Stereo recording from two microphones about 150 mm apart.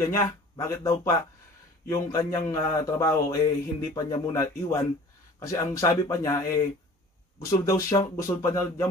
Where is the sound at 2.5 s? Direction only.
20° left (ahead or behind).